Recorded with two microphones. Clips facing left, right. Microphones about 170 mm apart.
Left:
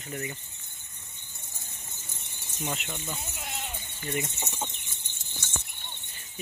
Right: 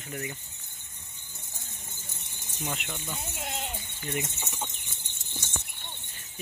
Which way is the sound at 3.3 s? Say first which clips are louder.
Right 3 dB; 20° right (ahead or behind).